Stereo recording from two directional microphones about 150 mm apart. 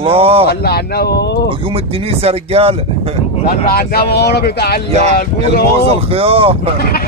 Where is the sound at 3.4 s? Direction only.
90° left.